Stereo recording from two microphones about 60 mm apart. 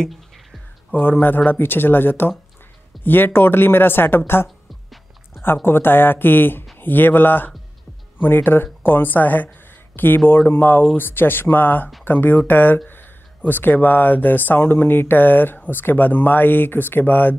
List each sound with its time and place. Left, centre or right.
0.0 s music: centre
0.9 s speech: left
5.4 s speech: left